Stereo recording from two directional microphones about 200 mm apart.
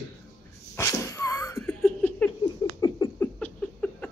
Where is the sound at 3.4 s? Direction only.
5° left (ahead or behind).